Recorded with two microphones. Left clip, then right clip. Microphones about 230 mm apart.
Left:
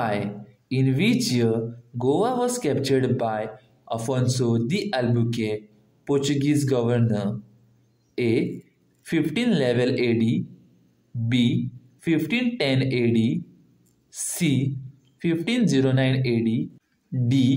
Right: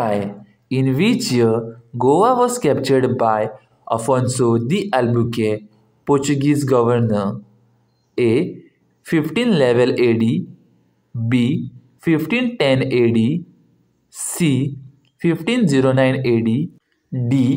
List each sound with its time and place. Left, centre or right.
0.0 s speech: centre